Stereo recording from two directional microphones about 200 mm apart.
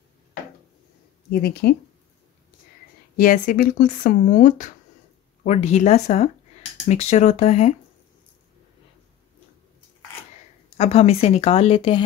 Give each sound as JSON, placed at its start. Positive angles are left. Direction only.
{"t": 1.3, "sound": "speech", "side_deg": 50}
{"t": 3.2, "sound": "speech", "side_deg": 45}
{"t": 10.8, "sound": "speech", "side_deg": 30}